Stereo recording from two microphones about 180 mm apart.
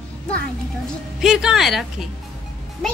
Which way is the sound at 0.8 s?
5° right (ahead or behind).